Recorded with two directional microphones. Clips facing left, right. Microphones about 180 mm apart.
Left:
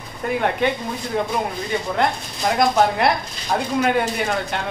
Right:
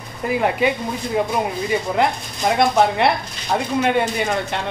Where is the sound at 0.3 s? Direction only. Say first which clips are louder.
Right 2 dB; 5° right (ahead or behind).